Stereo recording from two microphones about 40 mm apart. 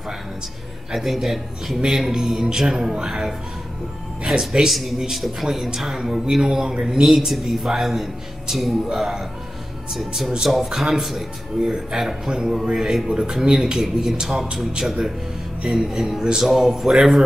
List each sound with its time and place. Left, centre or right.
0.9 s a man's voice: centre
4.6 s a man's voice: centre
14.5 s a man's voice: centre